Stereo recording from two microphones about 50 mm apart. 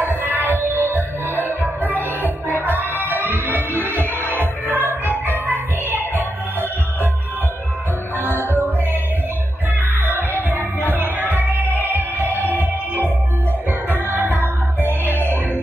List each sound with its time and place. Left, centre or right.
0.0 s music: right
8.2 s music: right
10.9 s music: right